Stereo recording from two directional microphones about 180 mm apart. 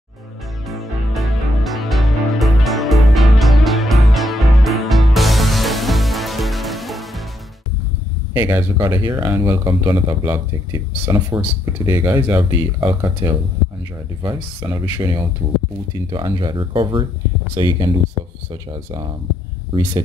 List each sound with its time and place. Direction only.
0.7 s music: centre (ahead or behind)
8.3 s speech: 15° right (ahead or behind)